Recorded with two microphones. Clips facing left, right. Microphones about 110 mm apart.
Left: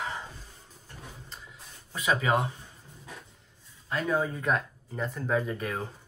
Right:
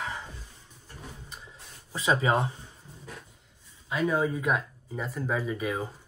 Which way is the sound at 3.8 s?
10° right (ahead or behind).